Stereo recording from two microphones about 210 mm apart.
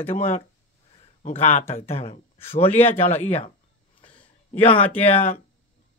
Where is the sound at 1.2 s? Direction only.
30° left (ahead or behind).